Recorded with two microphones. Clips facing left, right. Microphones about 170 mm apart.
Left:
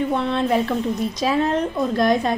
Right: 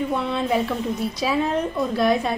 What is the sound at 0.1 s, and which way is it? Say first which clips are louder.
A woman's voice: left 2 dB; 5° right (ahead or behind).